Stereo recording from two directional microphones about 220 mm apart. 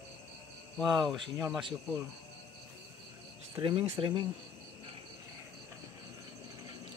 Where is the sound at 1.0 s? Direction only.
Centre (ahead or behind).